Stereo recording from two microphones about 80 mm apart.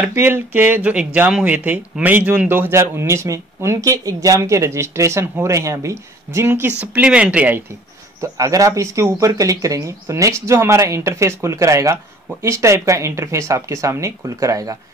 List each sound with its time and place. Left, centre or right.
0.1 s speech: right
6.8 s speech: centre
8.2 s speech: right